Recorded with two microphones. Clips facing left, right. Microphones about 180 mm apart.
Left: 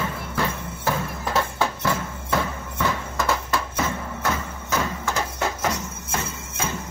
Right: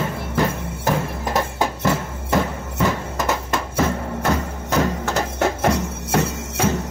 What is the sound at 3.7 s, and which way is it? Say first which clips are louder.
Music: right 6 dB; 35° right (ahead or behind).